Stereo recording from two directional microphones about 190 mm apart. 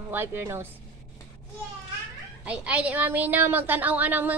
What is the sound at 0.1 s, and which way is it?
Speech, 10° right (ahead or behind).